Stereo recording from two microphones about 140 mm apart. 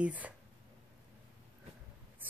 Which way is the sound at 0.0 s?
10° right (ahead or behind).